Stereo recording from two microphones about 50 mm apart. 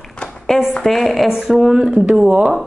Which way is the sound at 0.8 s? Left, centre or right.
Centre.